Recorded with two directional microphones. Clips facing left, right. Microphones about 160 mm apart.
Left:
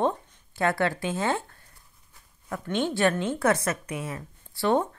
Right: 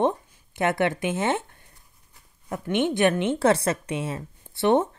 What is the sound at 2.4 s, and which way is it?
A woman's voice, 20° right (ahead or behind).